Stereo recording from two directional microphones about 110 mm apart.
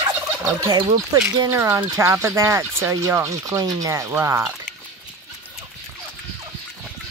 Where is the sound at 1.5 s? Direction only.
30° right (ahead or behind).